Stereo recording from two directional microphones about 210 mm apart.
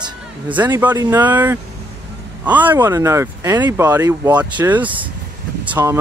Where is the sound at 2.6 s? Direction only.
10° right (ahead or behind).